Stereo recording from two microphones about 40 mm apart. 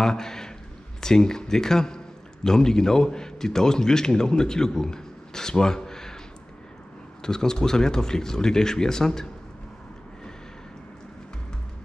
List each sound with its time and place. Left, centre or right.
0.0 s a man's voice: centre
7.2 s speech: centre